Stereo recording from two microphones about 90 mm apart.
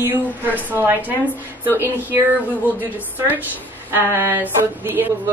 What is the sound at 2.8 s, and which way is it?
A woman's voice, 20° right (ahead or behind).